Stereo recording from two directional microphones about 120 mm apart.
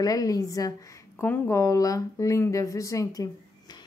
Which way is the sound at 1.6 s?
30° left (ahead or behind).